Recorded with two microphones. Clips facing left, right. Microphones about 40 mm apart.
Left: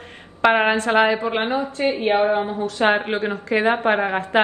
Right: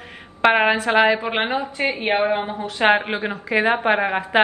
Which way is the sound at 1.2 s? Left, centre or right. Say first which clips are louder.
Left 1 dB; right.